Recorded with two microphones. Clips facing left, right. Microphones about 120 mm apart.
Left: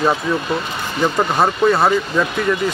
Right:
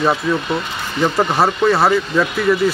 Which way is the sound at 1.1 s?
Centre (ahead or behind).